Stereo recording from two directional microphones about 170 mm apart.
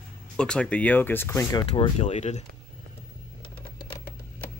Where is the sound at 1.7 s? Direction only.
35° left (ahead or behind).